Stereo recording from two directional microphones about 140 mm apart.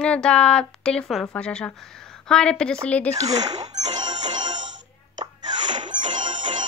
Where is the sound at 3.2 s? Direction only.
30° right (ahead or behind).